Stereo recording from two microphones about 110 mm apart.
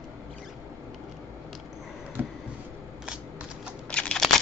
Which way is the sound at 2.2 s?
15° right (ahead or behind).